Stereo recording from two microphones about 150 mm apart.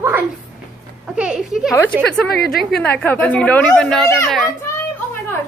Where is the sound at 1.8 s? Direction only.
10° left (ahead or behind).